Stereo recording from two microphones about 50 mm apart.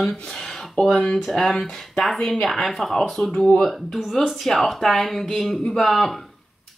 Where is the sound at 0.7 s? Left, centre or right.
Centre.